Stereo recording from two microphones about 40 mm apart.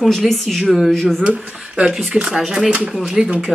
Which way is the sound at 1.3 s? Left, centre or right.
Right.